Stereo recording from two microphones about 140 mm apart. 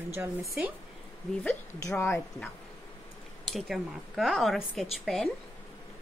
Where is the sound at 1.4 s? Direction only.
15° left (ahead or behind).